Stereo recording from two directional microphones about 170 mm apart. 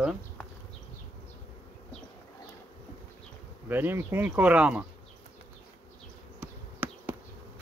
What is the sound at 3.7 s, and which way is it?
Speech, 10° right (ahead or behind).